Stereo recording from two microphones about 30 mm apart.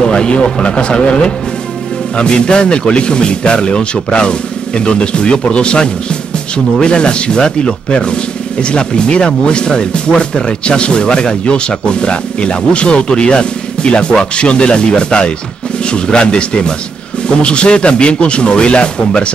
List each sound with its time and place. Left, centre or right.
0.0 s speech: left